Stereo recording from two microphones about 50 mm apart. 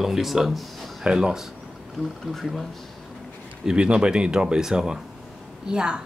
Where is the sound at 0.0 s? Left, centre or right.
Centre.